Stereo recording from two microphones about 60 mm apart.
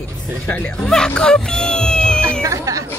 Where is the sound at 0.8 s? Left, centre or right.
Centre.